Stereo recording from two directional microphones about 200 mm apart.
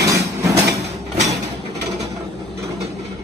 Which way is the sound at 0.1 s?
15° right (ahead or behind).